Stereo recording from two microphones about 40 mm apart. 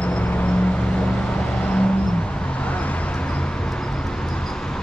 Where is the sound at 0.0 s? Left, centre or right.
Left.